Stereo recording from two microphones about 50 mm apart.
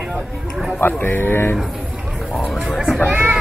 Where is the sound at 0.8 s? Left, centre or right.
Left.